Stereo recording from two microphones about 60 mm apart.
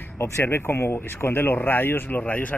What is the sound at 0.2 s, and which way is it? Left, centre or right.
Speech, left.